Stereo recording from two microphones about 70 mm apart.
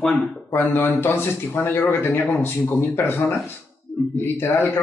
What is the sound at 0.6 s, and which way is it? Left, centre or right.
A man's voice, left.